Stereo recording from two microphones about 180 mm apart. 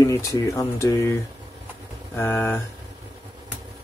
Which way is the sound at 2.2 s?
15° left (ahead or behind).